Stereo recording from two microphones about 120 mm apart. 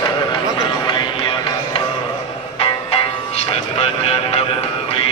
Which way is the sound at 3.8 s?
55° left (ahead or behind).